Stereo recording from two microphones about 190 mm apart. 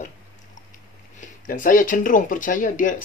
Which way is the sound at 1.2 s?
45° left (ahead or behind).